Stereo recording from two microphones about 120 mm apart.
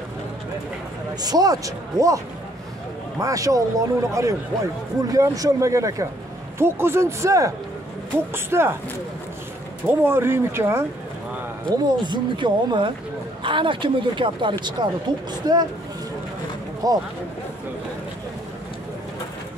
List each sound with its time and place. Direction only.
1.2 s a man's voice: 30° right (ahead or behind)
9.8 s a man's voice: 20° right (ahead or behind)
11.8 s speech: 40° right (ahead or behind)
16.8 s speech: 30° right (ahead or behind)